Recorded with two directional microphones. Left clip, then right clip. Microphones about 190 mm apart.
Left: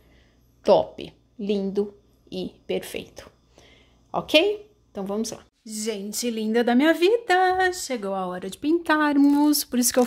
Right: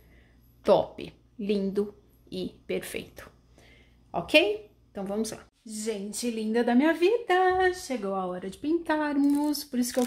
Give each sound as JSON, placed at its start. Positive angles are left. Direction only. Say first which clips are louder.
{"t": 0.6, "sound": "a woman's voice", "louder": "left 4 dB", "side_deg": 15}